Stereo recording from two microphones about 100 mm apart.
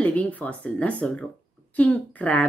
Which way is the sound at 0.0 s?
15° left (ahead or behind).